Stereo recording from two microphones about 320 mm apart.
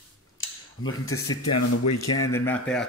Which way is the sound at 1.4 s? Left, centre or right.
Left.